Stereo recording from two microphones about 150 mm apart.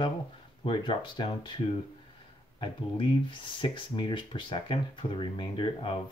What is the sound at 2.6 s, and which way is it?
Speech, 35° left (ahead or behind).